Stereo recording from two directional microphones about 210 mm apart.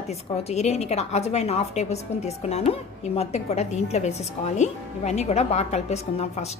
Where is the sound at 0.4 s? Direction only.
30° left (ahead or behind).